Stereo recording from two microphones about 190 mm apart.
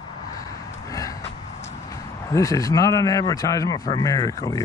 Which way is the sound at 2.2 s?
15° left (ahead or behind).